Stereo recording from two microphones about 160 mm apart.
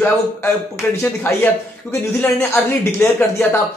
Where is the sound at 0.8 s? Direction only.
15° left (ahead or behind).